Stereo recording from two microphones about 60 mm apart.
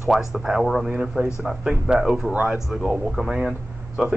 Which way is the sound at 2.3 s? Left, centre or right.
Right.